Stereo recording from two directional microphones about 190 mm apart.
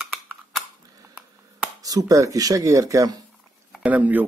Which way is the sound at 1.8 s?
20° right (ahead or behind).